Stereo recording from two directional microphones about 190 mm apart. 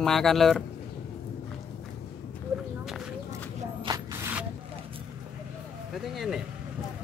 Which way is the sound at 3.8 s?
20° right (ahead or behind).